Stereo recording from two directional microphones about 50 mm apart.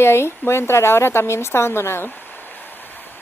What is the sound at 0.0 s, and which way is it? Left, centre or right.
Speech, left.